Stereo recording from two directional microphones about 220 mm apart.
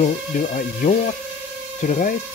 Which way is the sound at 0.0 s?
35° left (ahead or behind).